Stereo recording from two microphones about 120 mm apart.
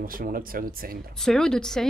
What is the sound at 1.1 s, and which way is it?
Speech, 5° left (ahead or behind).